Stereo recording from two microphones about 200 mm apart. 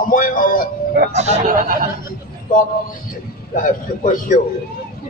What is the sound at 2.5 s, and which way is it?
Speech, 40° left (ahead or behind).